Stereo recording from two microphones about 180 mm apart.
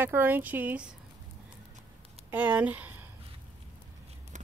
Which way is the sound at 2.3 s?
10° right (ahead or behind).